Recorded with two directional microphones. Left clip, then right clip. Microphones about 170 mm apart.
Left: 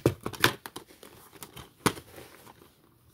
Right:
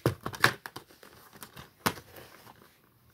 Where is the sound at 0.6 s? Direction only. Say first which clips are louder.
Left 1 dB; 15° left (ahead or behind).